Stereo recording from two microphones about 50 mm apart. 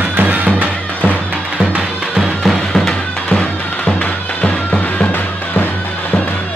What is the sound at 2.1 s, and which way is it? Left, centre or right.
Music, centre.